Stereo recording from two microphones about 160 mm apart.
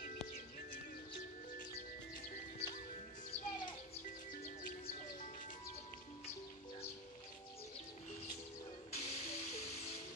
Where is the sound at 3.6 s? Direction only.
40° left (ahead or behind).